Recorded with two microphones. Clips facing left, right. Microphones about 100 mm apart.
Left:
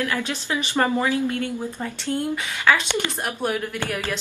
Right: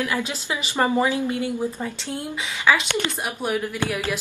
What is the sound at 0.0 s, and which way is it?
A woman's voice, 15° right (ahead or behind).